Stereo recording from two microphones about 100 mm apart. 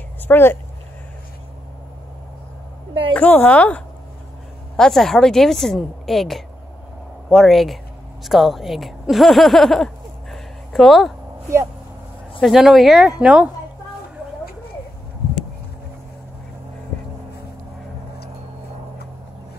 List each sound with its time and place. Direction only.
0.3 s speech: 25° left (ahead or behind)
3.2 s a woman's voice: 15° left (ahead or behind)
10.3 s a sound: 5° left (ahead or behind)
12.4 s a woman's voice: 5° right (ahead or behind)